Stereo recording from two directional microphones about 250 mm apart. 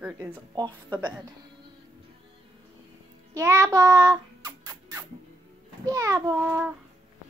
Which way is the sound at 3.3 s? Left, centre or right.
Centre.